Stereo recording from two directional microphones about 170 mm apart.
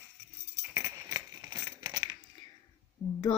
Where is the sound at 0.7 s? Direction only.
20° right (ahead or behind).